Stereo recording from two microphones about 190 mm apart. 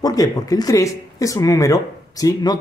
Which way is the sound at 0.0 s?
20° left (ahead or behind).